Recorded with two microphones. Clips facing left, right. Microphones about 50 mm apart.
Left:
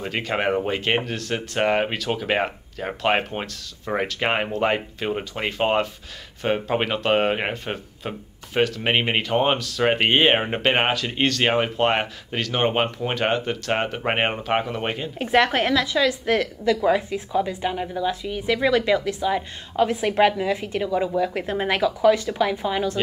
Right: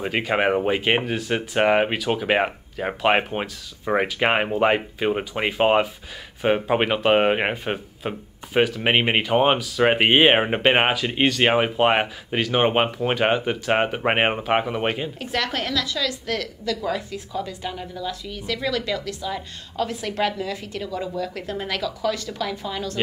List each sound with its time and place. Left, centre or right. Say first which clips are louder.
0.0 s speech: right 3 dB; centre
15.1 s a woman's voice: left 7 dB; left